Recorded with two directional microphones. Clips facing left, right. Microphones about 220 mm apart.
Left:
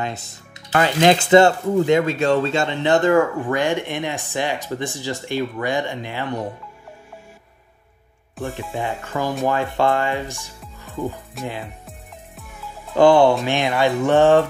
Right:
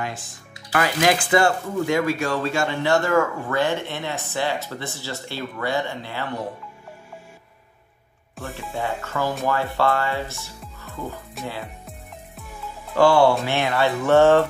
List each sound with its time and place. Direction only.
0.7 s speech: 25° left (ahead or behind)
8.7 s speech: 15° left (ahead or behind)
11.4 s music: centre (ahead or behind)
12.9 s speech: 20° left (ahead or behind)